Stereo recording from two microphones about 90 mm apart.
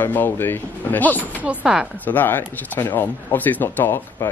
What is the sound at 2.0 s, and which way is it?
Speech, 20° left (ahead or behind).